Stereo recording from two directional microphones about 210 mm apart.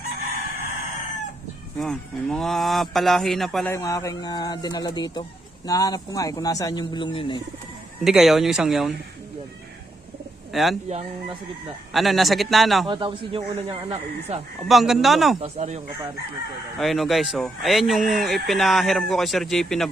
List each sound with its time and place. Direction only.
1.8 s speech: centre (ahead or behind)
3.7 s a man's voice: 15° left (ahead or behind)
8.0 s speech: centre (ahead or behind)
10.5 s a man's voice: centre (ahead or behind)
10.9 s speech: 30° right (ahead or behind)
11.9 s speech: centre (ahead or behind)
12.8 s speech: 20° right (ahead or behind)
14.6 s speech: centre (ahead or behind)
15.3 s speech: 30° right (ahead or behind)
16.7 s speech: centre (ahead or behind)